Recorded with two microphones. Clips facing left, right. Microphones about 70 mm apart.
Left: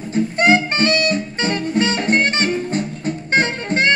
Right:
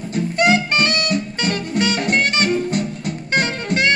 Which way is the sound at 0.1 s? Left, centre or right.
Left.